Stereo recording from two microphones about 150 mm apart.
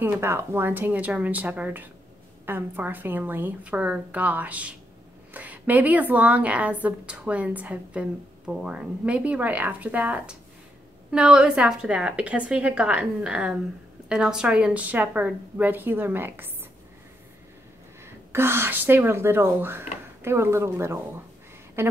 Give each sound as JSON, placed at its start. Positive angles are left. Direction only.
{"t": 0.0, "sound": "a woman's voice", "side_deg": -15}
{"t": 18.0, "sound": "a woman's voice", "side_deg": -15}